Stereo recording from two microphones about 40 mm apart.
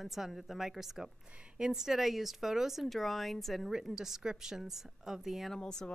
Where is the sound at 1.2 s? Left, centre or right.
Right.